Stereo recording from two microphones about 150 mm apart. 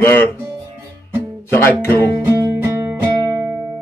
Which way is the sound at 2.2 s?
20° right (ahead or behind).